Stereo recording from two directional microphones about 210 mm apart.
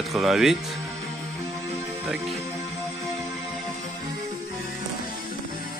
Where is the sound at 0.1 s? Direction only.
Centre (ahead or behind).